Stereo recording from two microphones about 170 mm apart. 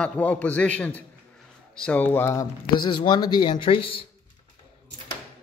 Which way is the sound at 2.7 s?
25° left (ahead or behind).